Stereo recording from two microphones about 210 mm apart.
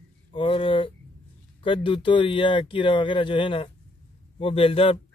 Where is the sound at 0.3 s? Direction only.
25° left (ahead or behind).